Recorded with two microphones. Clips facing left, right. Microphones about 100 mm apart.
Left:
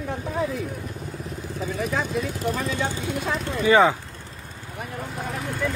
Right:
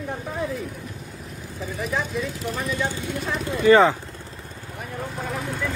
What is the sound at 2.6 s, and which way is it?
Speech, 25° left (ahead or behind).